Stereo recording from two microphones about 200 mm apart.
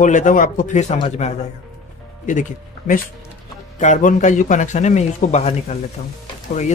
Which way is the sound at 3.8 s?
40° left (ahead or behind).